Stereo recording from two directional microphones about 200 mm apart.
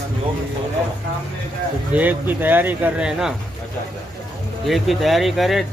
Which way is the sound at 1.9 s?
10° right (ahead or behind).